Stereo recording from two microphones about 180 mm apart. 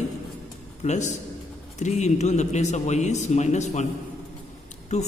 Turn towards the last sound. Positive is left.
turn(degrees=40)  # may be behind; listen again after turning